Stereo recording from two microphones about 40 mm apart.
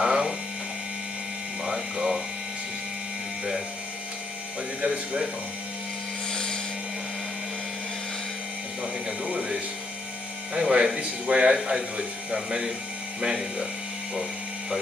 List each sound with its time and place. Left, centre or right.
0.0 s hum: right
1.6 s a sound: centre
4.8 s speech: right
6.3 s helicopter: centre
9.0 s speech: right